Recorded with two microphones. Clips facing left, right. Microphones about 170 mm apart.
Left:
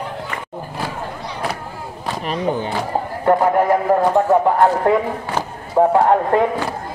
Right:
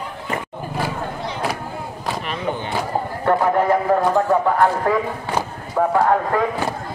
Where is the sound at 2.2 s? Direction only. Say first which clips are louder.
Left 8 dB; 40° left (ahead or behind).